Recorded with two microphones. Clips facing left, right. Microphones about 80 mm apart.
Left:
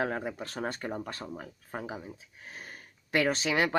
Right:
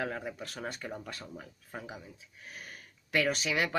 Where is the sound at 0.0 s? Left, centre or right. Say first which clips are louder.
Left 4 dB; left.